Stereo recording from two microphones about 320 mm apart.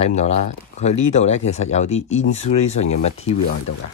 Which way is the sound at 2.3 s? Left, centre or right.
Centre.